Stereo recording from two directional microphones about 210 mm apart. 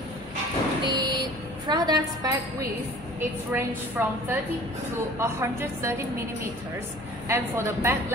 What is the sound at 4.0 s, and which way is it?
Speech, 10° right (ahead or behind).